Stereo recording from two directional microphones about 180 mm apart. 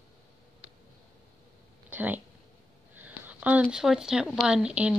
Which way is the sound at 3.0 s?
10° right (ahead or behind).